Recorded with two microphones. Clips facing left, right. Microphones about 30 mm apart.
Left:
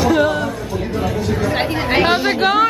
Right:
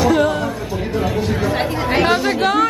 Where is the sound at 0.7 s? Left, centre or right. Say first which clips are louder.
Even; centre.